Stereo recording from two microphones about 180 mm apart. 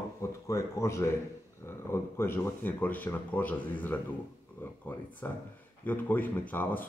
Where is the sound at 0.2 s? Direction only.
15° left (ahead or behind).